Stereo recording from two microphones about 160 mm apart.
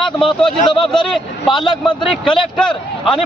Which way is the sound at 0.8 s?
Centre (ahead or behind).